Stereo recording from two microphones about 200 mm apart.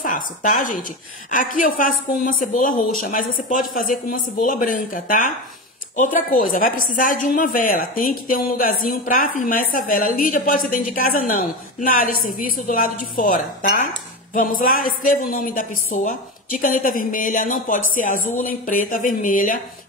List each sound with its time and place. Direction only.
0.0 s a woman's voice: 40° left (ahead or behind)